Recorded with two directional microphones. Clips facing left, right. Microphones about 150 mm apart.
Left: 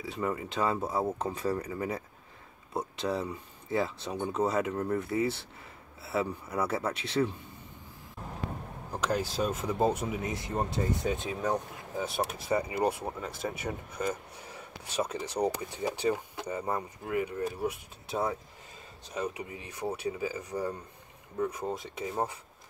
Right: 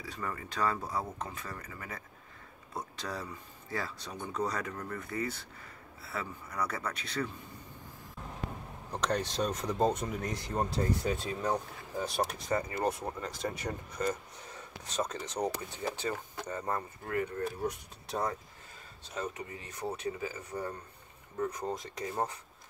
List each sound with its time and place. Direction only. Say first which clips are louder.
0.0 s speech: left 7 dB; 20° left (ahead or behind)
8.9 s speech: left 2 dB; 5° left (ahead or behind)